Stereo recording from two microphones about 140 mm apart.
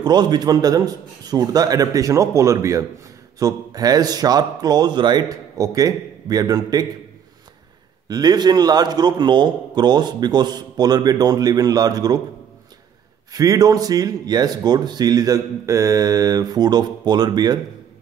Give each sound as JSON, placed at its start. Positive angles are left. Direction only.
{"t": 0.0, "sound": "speech", "side_deg": -30}
{"t": 8.1, "sound": "speech", "side_deg": -30}
{"t": 13.3, "sound": "speech", "side_deg": -25}